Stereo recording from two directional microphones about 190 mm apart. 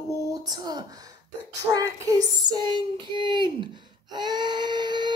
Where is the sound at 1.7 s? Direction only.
20° right (ahead or behind).